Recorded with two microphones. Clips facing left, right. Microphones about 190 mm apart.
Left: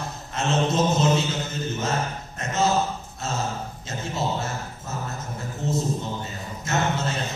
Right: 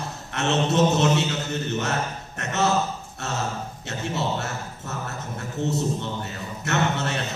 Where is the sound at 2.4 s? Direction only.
70° right (ahead or behind).